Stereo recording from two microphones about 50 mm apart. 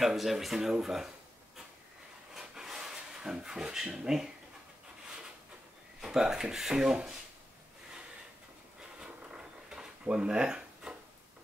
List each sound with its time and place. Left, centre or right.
0.0 s speech: centre
2.3 s rub: centre
3.7 s speech: centre
5.9 s speech: centre
9.0 s a sound: centre